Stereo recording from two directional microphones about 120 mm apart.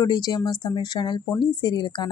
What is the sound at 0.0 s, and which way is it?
Speech, 35° left (ahead or behind).